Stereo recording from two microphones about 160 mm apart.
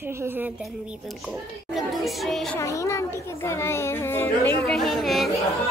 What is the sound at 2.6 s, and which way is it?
A child's voice, 20° left (ahead or behind).